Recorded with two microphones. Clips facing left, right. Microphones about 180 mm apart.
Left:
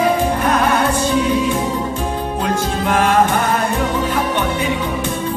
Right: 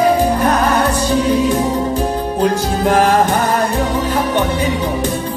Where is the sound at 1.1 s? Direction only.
40° right (ahead or behind).